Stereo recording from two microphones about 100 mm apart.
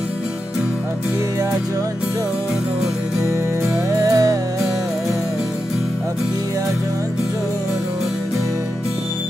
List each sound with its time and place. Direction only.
3.9 s music: 35° right (ahead or behind)